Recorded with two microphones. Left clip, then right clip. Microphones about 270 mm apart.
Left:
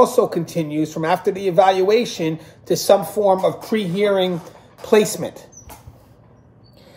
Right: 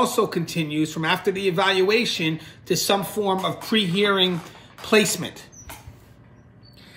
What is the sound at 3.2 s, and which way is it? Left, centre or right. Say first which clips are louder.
Speech: left 7 dB; right.